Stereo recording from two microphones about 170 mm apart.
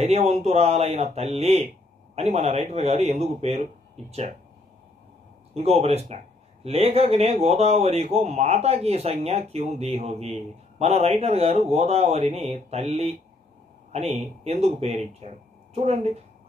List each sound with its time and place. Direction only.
0.0 s speech: 40° right (ahead or behind)
5.5 s speech: 35° right (ahead or behind)